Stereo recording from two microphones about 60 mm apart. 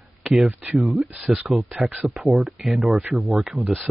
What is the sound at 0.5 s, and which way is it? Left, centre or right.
Speech, right.